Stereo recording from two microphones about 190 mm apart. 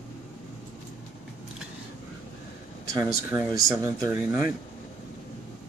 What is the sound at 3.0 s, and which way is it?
Speech, 15° right (ahead or behind).